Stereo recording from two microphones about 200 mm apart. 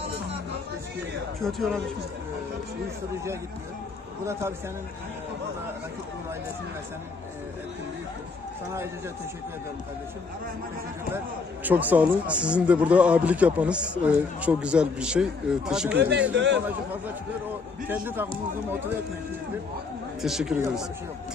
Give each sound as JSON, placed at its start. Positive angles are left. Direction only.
{"t": 1.4, "sound": "a man's voice", "side_deg": 0}
{"t": 4.3, "sound": "speech", "side_deg": -15}
{"t": 11.6, "sound": "a man's voice", "side_deg": -10}
{"t": 16.0, "sound": "speech", "side_deg": -55}
{"t": 17.8, "sound": "speech", "side_deg": -10}
{"t": 20.2, "sound": "a man's voice", "side_deg": 0}